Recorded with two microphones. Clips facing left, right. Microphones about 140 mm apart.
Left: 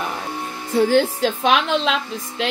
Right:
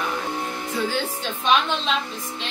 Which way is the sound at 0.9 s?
85° left.